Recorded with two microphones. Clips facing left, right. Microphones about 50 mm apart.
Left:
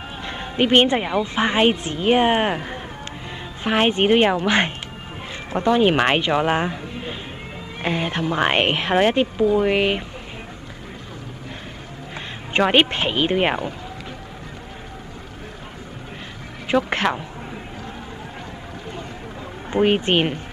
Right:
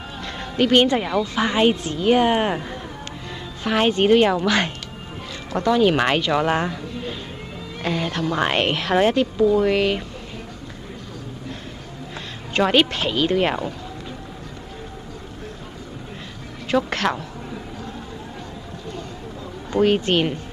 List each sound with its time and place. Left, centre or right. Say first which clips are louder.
0.2 s speech: even; left
12.5 s speech: left 1 dB; left
16.6 s a sound: left 1 dB; left
19.7 s speech: even; left